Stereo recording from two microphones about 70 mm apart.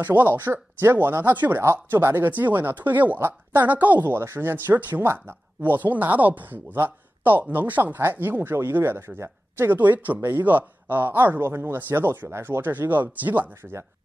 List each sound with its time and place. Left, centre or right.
0.0 s speech: right